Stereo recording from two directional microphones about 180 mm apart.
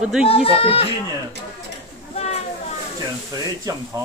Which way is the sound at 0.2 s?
30° left (ahead or behind).